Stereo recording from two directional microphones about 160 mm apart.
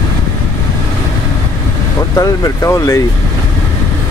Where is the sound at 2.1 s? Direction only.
20° left (ahead or behind).